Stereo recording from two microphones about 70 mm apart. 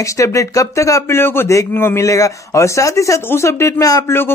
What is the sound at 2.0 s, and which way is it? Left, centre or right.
Speech, left.